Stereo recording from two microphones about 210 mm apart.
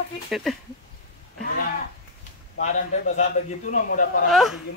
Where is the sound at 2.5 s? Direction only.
35° left (ahead or behind).